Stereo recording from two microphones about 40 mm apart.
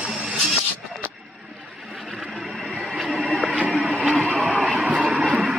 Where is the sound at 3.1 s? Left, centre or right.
Centre.